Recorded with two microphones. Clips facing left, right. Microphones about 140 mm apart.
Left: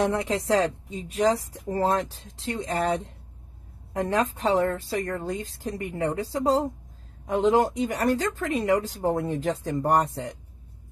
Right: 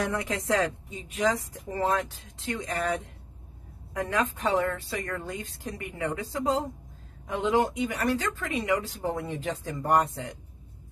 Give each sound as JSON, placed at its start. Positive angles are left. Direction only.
{"t": 0.0, "sound": "a woman's voice", "side_deg": 30}